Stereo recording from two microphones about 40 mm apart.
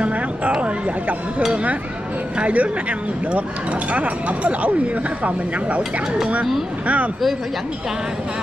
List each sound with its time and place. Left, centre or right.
0.0 s speech: right
3.9 s speech: right